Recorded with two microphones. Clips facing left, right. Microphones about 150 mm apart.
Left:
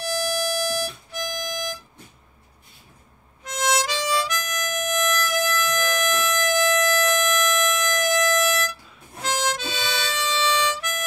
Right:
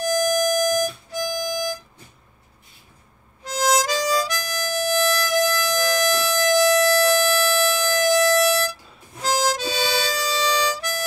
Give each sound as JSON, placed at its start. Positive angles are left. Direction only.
{"t": 0.0, "sound": "music", "side_deg": -45}
{"t": 3.4, "sound": "harmonica", "side_deg": -35}